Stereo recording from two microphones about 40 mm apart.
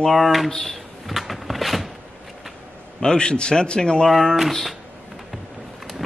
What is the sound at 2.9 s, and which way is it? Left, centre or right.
A man's voice, centre.